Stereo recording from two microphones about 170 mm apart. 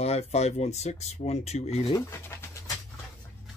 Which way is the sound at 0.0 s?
40° left (ahead or behind).